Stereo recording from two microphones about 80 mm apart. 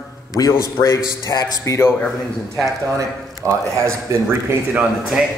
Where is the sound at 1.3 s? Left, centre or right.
Left.